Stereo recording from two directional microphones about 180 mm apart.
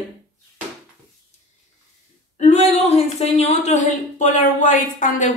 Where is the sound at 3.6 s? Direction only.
40° left (ahead or behind).